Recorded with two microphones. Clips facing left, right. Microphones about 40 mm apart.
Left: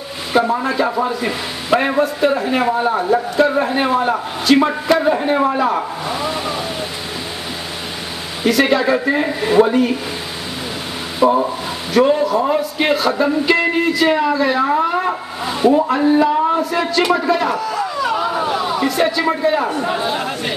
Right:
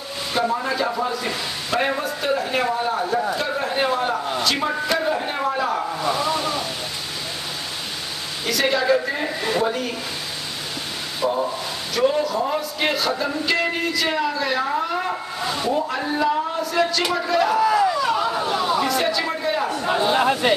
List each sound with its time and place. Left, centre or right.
0.3 s a woman's voice: centre
8.5 s a woman's voice: centre
11.2 s speech: left
11.9 s speech: centre
17.6 s speech: centre
17.8 s a man's voice: centre
19.9 s speech: centre
20.2 s speech: centre